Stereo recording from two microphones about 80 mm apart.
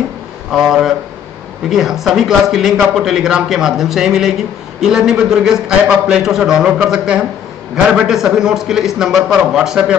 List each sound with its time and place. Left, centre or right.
0.5 s a man's voice: centre